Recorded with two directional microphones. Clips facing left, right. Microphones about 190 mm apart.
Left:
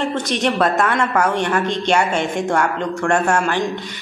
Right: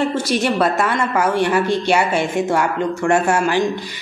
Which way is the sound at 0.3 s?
5° right (ahead or behind).